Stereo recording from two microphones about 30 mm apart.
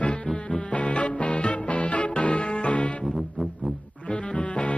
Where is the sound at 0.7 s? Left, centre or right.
Left.